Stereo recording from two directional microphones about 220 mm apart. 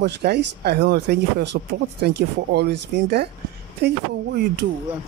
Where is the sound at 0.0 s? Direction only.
50° right (ahead or behind).